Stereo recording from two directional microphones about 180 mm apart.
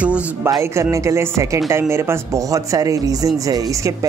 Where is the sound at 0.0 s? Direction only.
10° right (ahead or behind).